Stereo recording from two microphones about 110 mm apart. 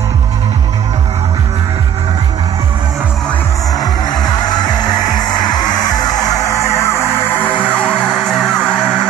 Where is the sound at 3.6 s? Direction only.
35° left (ahead or behind); by 8.9 s centre (ahead or behind).